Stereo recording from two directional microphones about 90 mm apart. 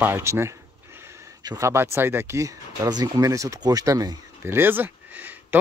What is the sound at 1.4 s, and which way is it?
Speech, 45° right (ahead or behind).